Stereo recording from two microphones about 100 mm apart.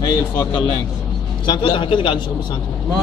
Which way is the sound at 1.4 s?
50° left (ahead or behind).